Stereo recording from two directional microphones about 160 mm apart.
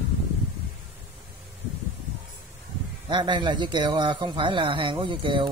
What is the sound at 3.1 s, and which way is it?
Speech, 30° right (ahead or behind).